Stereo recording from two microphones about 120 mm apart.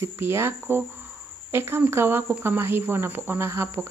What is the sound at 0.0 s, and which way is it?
Speech, 20° right (ahead or behind).